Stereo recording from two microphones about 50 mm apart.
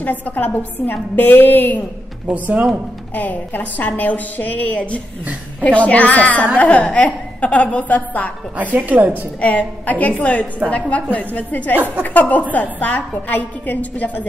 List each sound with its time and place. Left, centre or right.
0.0 s a woman's voice: left
2.2 s a woman's voice: right
3.2 s a woman's voice: left
8.7 s a woman's voice: right
9.4 s a woman's voice: left